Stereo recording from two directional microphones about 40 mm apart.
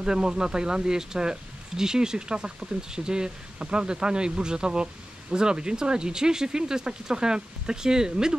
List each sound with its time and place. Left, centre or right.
0.0 s speech: centre